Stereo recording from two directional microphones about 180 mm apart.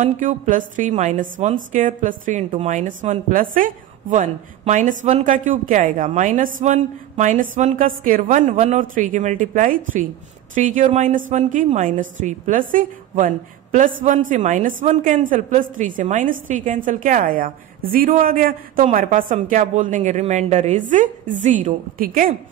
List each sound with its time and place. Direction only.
0.0 s a woman's voice: 45° right (ahead or behind)